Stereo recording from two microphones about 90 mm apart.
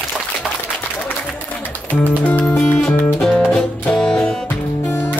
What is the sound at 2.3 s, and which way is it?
Music, 10° left (ahead or behind).